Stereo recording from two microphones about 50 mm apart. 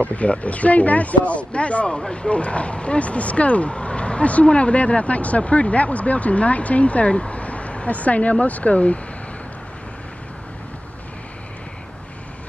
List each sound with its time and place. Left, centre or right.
0.0 s speech: left